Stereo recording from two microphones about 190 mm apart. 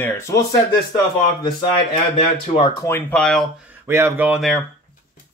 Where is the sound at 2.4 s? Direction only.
30° left (ahead or behind).